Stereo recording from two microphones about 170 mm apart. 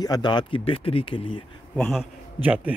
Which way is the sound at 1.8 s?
Centre (ahead or behind).